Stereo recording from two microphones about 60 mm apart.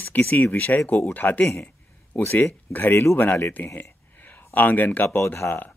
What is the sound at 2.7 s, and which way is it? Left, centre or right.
Speech, left.